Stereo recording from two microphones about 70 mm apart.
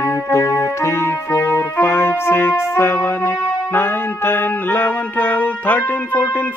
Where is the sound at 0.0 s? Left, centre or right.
Left.